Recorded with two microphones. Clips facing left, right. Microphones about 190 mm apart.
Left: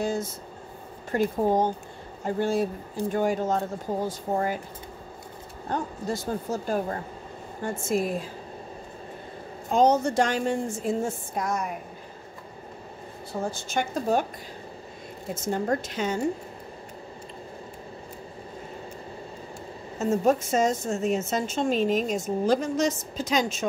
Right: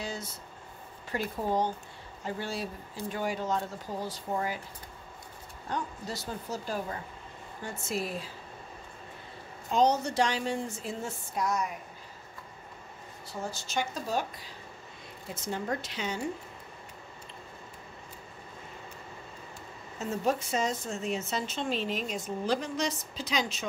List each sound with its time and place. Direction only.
0.0 s a woman's voice: 50° left (ahead or behind)
5.7 s a woman's voice: 50° left (ahead or behind)
9.7 s a woman's voice: 50° left (ahead or behind)
13.3 s a woman's voice: 55° left (ahead or behind)
15.3 s a woman's voice: 45° left (ahead or behind)
20.0 s a woman's voice: 45° left (ahead or behind)